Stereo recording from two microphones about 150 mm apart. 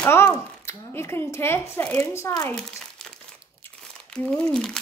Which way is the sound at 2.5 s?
5° left (ahead or behind).